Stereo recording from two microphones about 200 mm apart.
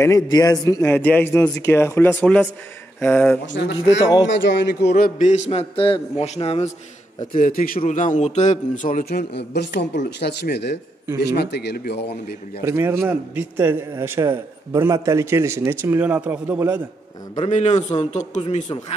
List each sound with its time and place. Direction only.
0.0 s a man's voice: 15° left (ahead or behind)
3.4 s a man's voice: 60° left (ahead or behind); by 6.7 s 30° left (ahead or behind)
7.2 s a man's voice: 45° left (ahead or behind)
9.3 s speech: 55° left (ahead or behind)
12.6 s a man's voice: 15° right (ahead or behind)
17.5 s a man's voice: 35° left (ahead or behind)